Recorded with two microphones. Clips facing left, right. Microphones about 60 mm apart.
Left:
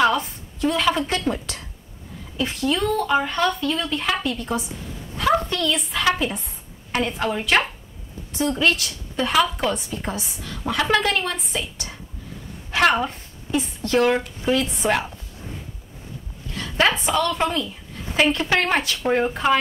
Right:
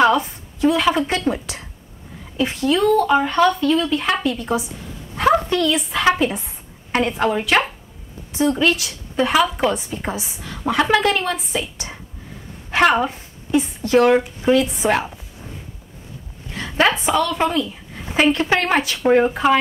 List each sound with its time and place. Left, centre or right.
0.0 s a sound: centre
0.7 s a woman's voice: centre
2.6 s a woman's voice: centre
10.9 s speech: centre
12.8 s a woman's voice: centre
16.5 s a sound: centre
16.8 s a woman's voice: centre